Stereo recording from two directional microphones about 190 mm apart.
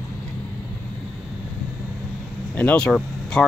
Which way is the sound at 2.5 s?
10° left (ahead or behind).